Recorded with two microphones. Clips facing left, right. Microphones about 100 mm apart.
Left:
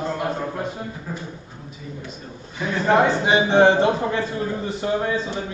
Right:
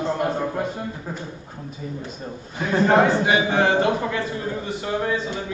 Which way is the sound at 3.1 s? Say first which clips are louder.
Left 1 dB; 25° left (ahead or behind).